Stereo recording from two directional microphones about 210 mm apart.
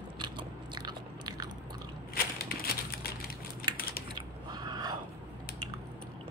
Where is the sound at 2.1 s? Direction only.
45° left (ahead or behind).